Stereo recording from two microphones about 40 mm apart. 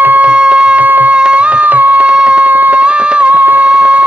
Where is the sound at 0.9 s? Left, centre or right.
Right.